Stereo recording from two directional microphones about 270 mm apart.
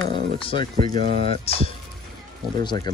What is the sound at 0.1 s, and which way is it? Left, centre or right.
Speech, centre.